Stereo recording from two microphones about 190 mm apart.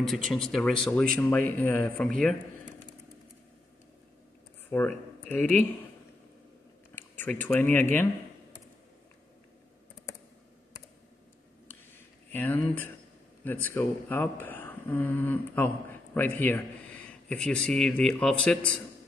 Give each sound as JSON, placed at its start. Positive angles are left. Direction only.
{"t": 0.0, "sound": "speech", "side_deg": 0}
{"t": 4.6, "sound": "speech", "side_deg": 10}
{"t": 7.0, "sound": "speech", "side_deg": 10}
{"t": 12.3, "sound": "a man's voice", "side_deg": 10}